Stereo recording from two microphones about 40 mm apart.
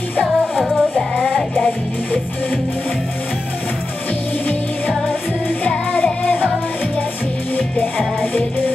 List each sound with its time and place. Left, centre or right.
0.4 s music: centre
7.5 s music: left